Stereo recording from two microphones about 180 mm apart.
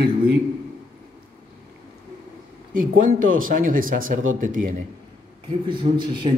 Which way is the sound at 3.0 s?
50° right (ahead or behind).